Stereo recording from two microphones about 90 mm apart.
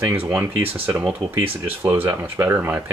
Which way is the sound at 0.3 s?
20° right (ahead or behind).